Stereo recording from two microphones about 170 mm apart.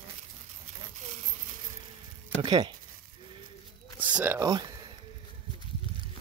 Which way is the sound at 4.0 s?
10° right (ahead or behind).